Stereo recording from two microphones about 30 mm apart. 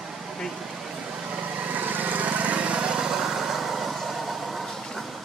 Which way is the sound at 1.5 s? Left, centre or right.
Right.